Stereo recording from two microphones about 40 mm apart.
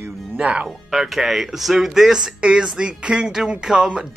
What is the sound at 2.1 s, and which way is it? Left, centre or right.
Speech, centre.